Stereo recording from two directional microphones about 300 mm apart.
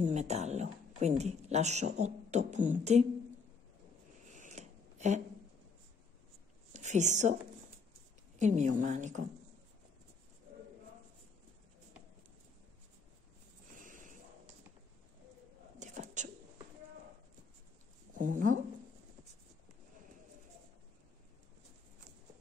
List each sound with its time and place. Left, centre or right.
0.0 s a woman's voice: right
4.3 s a sound: right
6.7 s a woman's voice: right
8.4 s a woman's voice: right
13.7 s a sound: right
15.8 s whispering: right
18.1 s speech: right